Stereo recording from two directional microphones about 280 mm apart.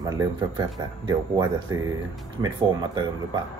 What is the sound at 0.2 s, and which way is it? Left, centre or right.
Speech, centre.